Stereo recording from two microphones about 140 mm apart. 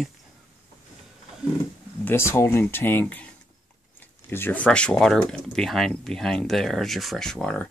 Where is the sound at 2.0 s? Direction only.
20° left (ahead or behind).